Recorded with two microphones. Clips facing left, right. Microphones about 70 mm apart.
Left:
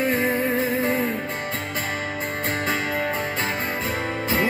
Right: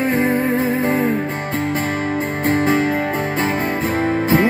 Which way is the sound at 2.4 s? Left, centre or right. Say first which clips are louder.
Right 10 dB; right.